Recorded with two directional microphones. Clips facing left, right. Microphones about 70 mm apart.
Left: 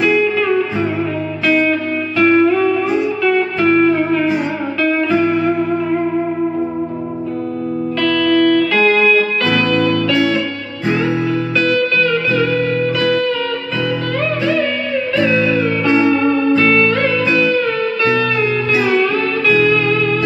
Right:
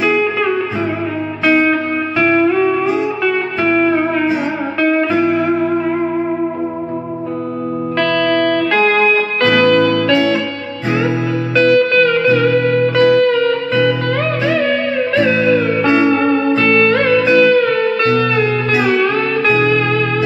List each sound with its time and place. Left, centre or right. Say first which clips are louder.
0.1 s music: left 1 dB; centre
8.7 s music: even; right
11.5 s music: right 7 dB; right
18.1 s music: right 2 dB; right